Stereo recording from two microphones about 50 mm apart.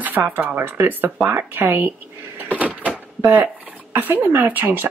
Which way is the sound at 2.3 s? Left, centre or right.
Right.